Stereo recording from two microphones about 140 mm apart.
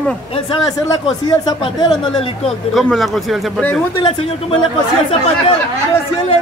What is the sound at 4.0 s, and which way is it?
Speech, 40° left (ahead or behind).